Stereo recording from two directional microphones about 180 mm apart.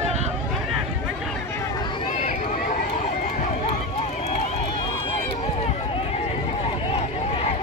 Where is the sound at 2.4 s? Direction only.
50° left (ahead or behind).